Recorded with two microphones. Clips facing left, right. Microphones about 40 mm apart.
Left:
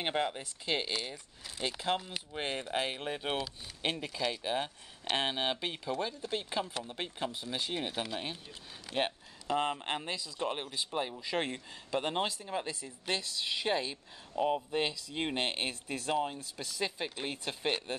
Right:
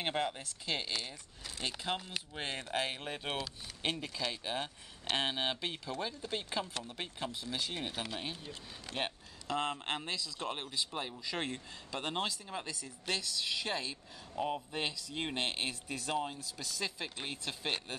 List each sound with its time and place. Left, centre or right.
0.0 s speech: centre
8.9 s a sound: centre
9.9 s speech: centre
16.1 s speech: centre
16.3 s speech: left
17.1 s speech: centre